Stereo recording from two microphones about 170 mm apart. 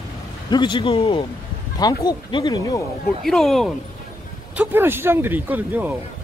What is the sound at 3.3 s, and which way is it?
Speech, centre (ahead or behind).